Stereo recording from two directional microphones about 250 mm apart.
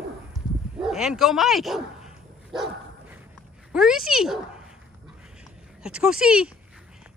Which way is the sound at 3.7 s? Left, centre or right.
Centre.